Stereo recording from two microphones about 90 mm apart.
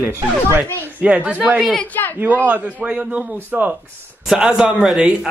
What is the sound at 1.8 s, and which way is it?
Speech, 20° left (ahead or behind).